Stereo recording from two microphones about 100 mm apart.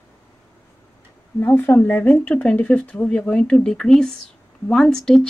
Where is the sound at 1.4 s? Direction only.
20° left (ahead or behind).